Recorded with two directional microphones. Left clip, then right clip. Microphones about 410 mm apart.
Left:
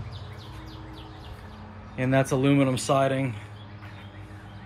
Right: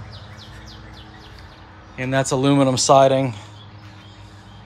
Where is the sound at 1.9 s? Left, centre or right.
Centre.